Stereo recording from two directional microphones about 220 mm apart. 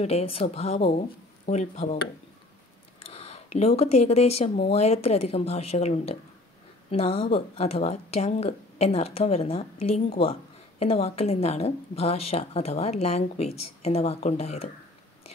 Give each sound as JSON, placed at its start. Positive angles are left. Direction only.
{"t": 0.0, "sound": "speech", "side_deg": 25}
{"t": 3.0, "sound": "speech", "side_deg": 25}